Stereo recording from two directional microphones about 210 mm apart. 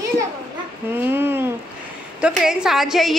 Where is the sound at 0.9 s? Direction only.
10° right (ahead or behind).